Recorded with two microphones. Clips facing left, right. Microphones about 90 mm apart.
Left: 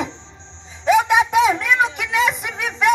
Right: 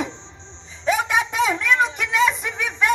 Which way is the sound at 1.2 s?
15° left (ahead or behind).